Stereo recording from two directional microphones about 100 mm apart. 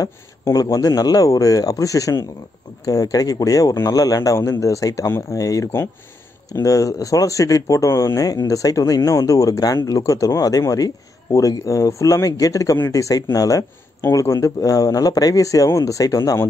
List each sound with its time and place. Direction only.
0.0 s speech: 35° left (ahead or behind)